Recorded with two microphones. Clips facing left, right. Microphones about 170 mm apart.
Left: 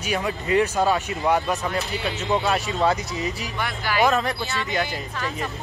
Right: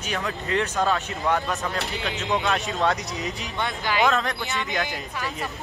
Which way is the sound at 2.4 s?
Centre (ahead or behind).